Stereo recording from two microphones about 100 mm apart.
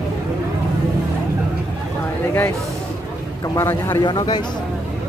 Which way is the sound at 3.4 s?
35° left (ahead or behind).